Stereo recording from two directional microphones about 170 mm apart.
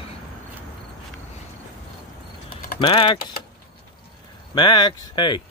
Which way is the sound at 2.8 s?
30° left (ahead or behind).